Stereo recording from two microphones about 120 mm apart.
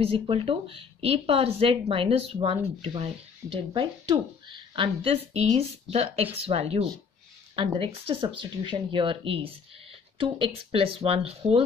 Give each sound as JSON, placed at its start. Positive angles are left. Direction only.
{"t": 0.0, "sound": "speech", "side_deg": -50}
{"t": 7.5, "sound": "speech", "side_deg": -45}